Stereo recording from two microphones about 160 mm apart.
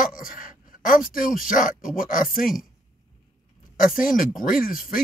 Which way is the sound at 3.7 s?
60° left (ahead or behind).